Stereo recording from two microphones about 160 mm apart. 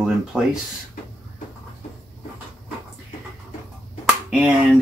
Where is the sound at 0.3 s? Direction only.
5° right (ahead or behind).